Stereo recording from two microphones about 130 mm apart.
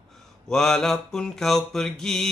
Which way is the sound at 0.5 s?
5° left (ahead or behind).